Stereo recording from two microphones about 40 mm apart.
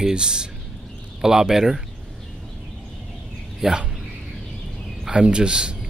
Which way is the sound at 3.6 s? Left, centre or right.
Centre.